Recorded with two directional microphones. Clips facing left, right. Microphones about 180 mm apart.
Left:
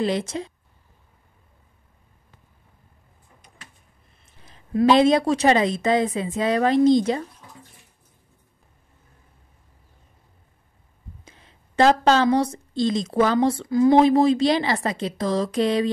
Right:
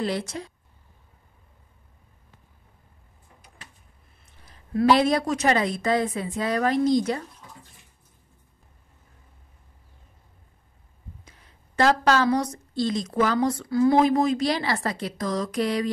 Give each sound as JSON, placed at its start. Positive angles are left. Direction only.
{"t": 0.0, "sound": "a woman's voice", "side_deg": 20}
{"t": 4.5, "sound": "a woman's voice", "side_deg": 20}
{"t": 11.2, "sound": "a woman's voice", "side_deg": 25}